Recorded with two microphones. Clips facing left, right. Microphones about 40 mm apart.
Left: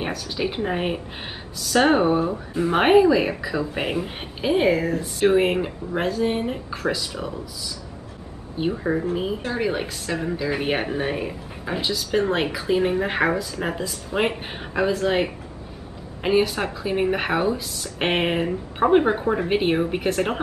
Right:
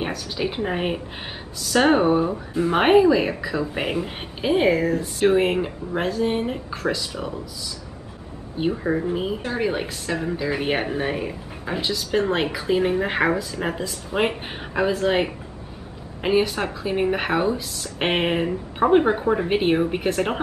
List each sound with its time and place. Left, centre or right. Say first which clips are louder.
0.0 s a woman's voice: even; centre
8.5 s a woman's voice: right 1 dB; centre